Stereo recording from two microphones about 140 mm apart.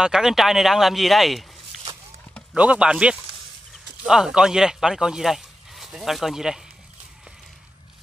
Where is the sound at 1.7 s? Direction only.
Centre (ahead or behind).